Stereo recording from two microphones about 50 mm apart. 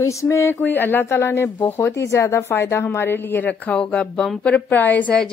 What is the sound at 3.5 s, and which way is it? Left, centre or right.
Speech, left.